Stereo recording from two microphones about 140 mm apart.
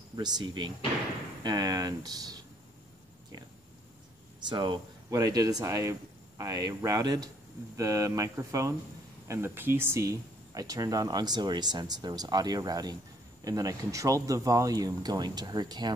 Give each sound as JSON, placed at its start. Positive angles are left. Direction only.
{"t": 0.1, "sound": "speech", "side_deg": -30}
{"t": 4.5, "sound": "speech", "side_deg": -35}